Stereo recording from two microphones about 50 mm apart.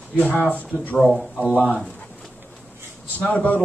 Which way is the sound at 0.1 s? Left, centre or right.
Left.